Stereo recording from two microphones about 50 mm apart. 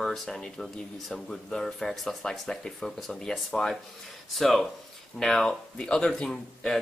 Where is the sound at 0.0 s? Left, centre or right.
Centre.